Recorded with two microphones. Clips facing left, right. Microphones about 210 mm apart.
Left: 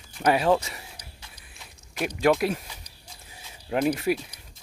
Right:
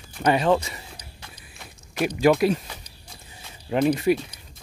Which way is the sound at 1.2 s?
60° right (ahead or behind).